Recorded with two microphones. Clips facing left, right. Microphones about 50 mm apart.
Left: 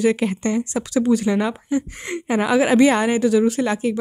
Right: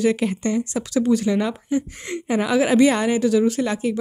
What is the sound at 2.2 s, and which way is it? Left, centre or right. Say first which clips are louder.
Speech: left 2 dB; left.